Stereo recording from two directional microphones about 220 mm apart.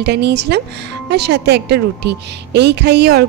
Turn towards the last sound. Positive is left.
turn(degrees=-50)  # may be behind; listen again after turning